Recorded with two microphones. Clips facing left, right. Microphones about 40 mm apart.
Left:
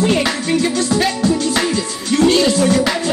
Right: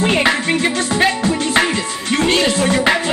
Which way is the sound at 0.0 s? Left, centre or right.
Right.